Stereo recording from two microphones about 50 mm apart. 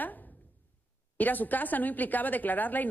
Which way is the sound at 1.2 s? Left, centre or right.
Left.